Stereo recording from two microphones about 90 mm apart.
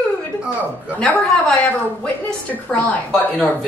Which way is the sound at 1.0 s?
15° left (ahead or behind).